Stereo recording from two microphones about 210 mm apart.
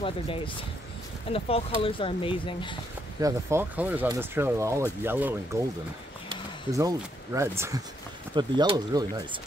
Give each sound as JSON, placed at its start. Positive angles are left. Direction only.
{"t": 0.0, "sound": "speech", "side_deg": 25}
{"t": 3.2, "sound": "speech", "side_deg": -15}